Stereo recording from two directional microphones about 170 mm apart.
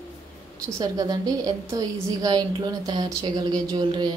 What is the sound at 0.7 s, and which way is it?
A woman's voice, 20° right (ahead or behind).